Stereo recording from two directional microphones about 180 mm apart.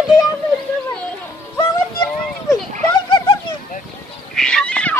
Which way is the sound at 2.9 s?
25° left (ahead or behind).